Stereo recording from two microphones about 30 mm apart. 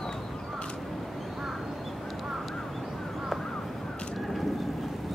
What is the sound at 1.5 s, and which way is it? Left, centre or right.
Duck, centre.